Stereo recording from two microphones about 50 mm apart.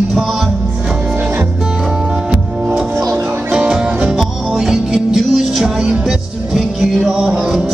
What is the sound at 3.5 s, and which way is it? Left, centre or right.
Music, centre.